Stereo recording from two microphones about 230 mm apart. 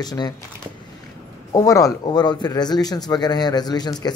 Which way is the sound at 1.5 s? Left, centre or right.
Centre.